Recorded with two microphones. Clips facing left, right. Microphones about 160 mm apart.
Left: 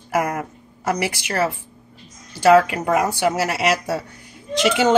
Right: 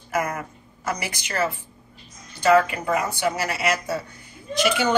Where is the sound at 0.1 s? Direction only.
70° left (ahead or behind).